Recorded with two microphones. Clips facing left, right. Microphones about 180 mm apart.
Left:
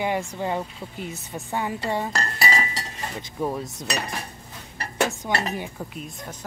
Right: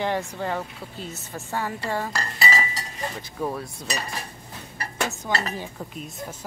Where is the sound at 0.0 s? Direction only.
10° left (ahead or behind).